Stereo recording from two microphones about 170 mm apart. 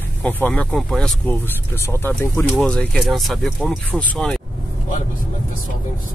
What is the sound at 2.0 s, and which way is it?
Speech, 15° left (ahead or behind).